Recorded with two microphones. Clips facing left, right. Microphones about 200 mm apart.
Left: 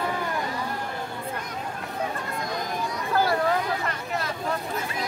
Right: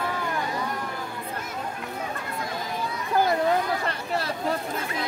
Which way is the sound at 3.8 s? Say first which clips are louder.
Right 1 dB; 30° right (ahead or behind).